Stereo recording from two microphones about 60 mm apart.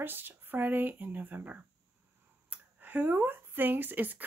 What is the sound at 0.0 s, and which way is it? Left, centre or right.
Speech, right.